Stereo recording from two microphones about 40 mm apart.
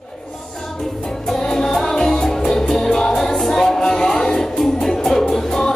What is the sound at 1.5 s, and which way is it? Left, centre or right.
Music, centre.